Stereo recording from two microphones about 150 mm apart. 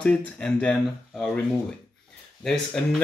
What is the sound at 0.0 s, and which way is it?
Speech, 5° left (ahead or behind).